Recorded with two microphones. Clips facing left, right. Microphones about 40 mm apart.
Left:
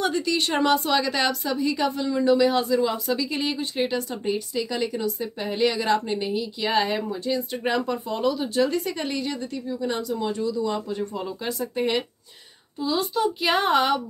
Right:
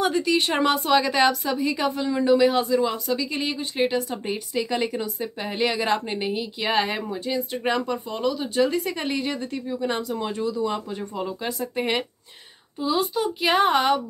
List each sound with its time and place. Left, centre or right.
0.0 s speech: centre
4.6 s a woman's voice: right; by 14.0 s centre